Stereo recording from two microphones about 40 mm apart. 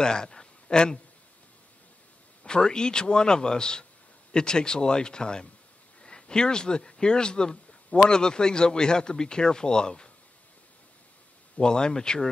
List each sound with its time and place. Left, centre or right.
0.0 s a sound: centre
2.4 s speech: centre
11.6 s speech: centre